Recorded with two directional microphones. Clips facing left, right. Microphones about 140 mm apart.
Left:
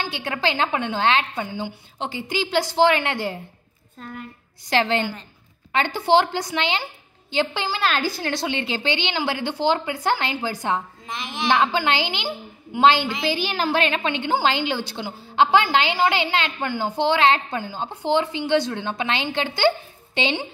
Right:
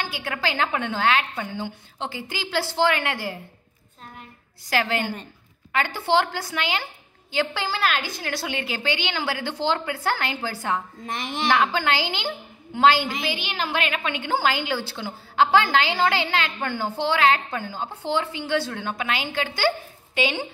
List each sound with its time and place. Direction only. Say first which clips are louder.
0.0 s a woman's voice: left 3 dB; 20° left (ahead or behind)
4.6 s a woman's voice: left 3 dB; 25° left (ahead or behind)
7.9 s a woman's voice: left 4 dB; 35° left (ahead or behind)
13.2 s a woman's voice: left 5 dB; 35° left (ahead or behind)